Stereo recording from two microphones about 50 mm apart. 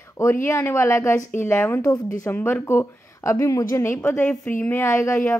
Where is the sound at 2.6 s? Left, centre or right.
Left.